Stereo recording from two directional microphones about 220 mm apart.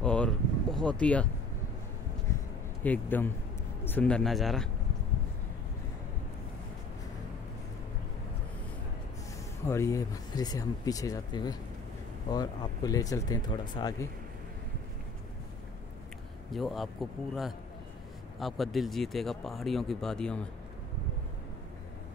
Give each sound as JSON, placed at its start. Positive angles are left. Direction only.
{"t": 0.0, "sound": "a sound", "side_deg": 5}
{"t": 2.8, "sound": "speech", "side_deg": 10}
{"t": 9.7, "sound": "speech", "side_deg": 15}
{"t": 16.5, "sound": "speech", "side_deg": 0}